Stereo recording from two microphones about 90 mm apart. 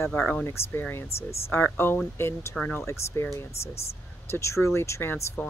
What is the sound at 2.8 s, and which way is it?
Speech, 30° left (ahead or behind).